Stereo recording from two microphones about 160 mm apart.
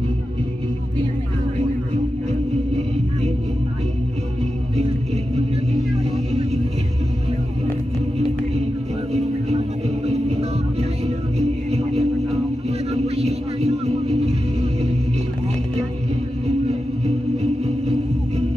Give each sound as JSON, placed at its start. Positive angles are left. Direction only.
{"t": 4.7, "sound": "music", "side_deg": -40}
{"t": 9.1, "sound": "music", "side_deg": -40}
{"t": 16.4, "sound": "music", "side_deg": -40}